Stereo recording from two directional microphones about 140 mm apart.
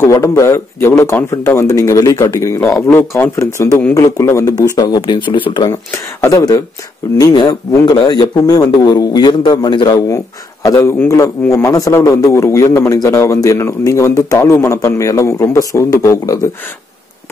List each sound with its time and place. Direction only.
0.0 s speech: 20° left (ahead or behind)
6.2 s speech: 25° left (ahead or behind)